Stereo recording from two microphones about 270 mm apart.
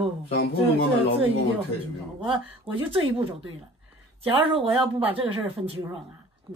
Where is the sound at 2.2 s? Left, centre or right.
Right.